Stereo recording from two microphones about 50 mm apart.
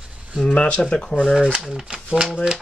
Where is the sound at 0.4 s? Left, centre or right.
Centre.